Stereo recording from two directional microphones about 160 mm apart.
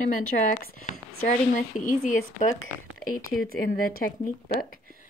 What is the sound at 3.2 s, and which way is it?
Speech, 65° left (ahead or behind).